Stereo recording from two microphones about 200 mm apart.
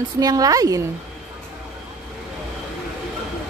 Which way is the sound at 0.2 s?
20° right (ahead or behind).